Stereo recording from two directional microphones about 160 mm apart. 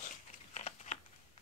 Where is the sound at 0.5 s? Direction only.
45° left (ahead or behind).